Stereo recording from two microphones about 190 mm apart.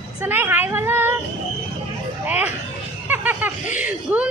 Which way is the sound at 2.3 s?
10° right (ahead or behind).